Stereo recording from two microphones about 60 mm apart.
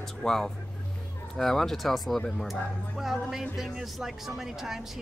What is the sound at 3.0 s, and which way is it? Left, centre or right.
Speech, centre.